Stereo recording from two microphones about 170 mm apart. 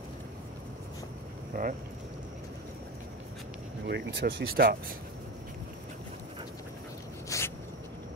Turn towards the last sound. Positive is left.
turn(degrees=20)  # may be behind; listen again after turning